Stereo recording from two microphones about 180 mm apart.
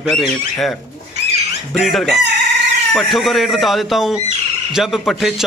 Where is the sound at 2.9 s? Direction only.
Centre (ahead or behind).